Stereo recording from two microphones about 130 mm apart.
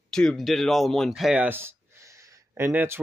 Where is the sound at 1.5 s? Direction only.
20° right (ahead or behind).